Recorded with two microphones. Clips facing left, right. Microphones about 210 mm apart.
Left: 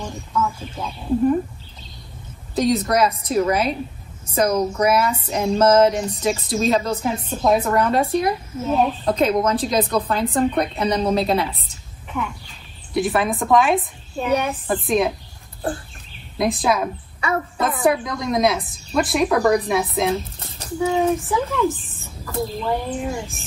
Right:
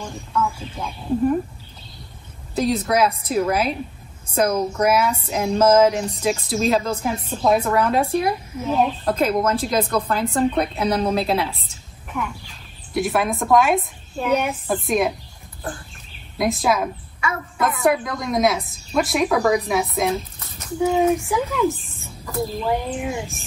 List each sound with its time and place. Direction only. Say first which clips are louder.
0.0 s speech: even; 5° left (ahead or behind)
2.5 s speech: left 1 dB; centre (ahead or behind)
16.3 s speech: even; centre (ahead or behind)
20.3 s a sound: left 2 dB; 30° left (ahead or behind)
20.8 s speech: right 1 dB; 10° right (ahead or behind)
22.9 s speech: even; 15° right (ahead or behind)